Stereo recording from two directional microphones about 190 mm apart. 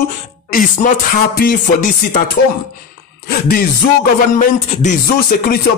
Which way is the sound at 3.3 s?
50° left (ahead or behind).